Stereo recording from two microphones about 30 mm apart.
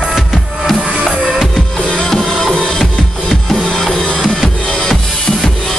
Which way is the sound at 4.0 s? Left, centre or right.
Left.